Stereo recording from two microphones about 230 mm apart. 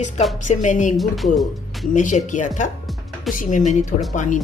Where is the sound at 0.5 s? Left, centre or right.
Left.